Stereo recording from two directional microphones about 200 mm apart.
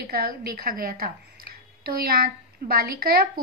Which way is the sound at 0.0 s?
50° right (ahead or behind).